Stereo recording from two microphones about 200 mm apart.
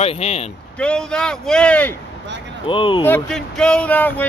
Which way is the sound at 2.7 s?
25° left (ahead or behind).